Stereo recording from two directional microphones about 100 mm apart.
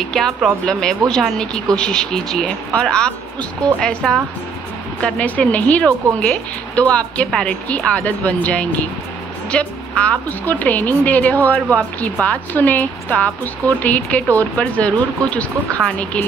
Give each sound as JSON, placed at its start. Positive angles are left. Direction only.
{"t": 0.1, "sound": "a woman's voice", "side_deg": 5}